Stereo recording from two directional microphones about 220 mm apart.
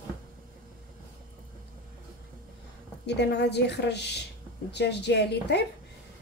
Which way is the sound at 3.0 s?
50° left (ahead or behind).